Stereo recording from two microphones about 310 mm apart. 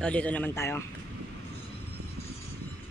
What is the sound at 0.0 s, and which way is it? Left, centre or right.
Speech, centre.